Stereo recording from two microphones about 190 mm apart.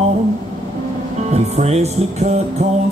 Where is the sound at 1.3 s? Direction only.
35° right (ahead or behind).